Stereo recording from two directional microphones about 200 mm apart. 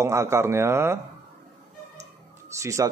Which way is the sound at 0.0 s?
15° right (ahead or behind).